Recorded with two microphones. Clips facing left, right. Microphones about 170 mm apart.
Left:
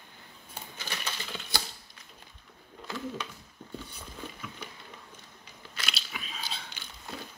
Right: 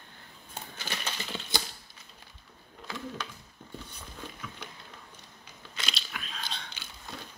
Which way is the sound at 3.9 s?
10° left (ahead or behind).